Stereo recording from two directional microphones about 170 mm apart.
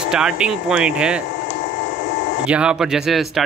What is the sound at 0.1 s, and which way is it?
Speech, 5° right (ahead or behind).